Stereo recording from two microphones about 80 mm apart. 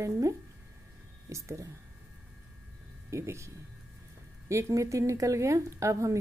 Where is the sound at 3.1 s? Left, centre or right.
Right.